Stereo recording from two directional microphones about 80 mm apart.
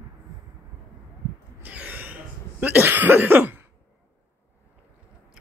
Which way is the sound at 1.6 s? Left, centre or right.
Centre.